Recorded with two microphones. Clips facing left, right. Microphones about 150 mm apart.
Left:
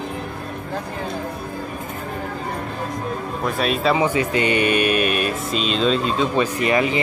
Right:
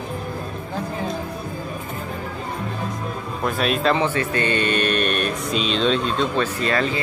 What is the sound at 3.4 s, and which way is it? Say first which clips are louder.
Speech: even; centre (ahead or behind).